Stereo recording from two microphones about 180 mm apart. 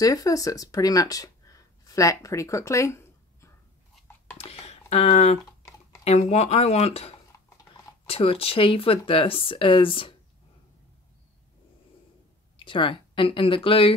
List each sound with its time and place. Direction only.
0.0 s speech: 20° left (ahead or behind)
4.4 s speech: 35° left (ahead or behind)
12.5 s speech: 30° left (ahead or behind)